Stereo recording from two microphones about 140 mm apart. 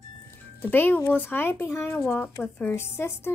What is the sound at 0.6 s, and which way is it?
A woman's voice, 15° left (ahead or behind).